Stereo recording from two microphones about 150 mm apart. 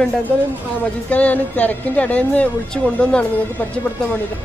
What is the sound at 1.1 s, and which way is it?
A woman's voice, 10° left (ahead or behind).